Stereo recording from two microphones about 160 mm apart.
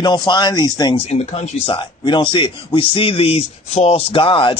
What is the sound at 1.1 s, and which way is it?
Speech, 45° left (ahead or behind).